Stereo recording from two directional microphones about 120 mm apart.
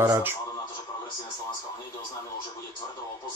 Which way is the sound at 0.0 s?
20° right (ahead or behind).